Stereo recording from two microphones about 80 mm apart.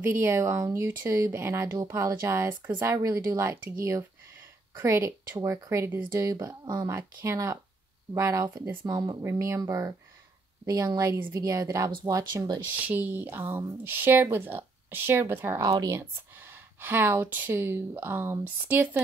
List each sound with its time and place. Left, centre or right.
0.0 s speech: right
6.4 s speech: right
7.2 s speech: right
8.8 s speech: right
9.2 s speech: right
12.7 s speech: centre
15.6 s speech: right
16.8 s speech: right